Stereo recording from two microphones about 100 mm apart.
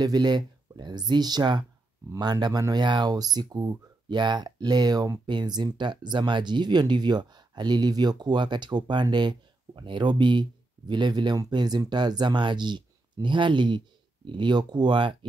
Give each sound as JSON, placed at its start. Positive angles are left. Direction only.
{"t": 0.0, "sound": "speech", "side_deg": -45}
{"t": 2.6, "sound": "speech", "side_deg": -45}